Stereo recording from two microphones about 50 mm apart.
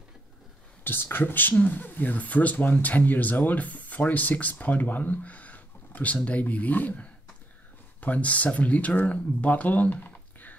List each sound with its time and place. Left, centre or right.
0.8 s speech: left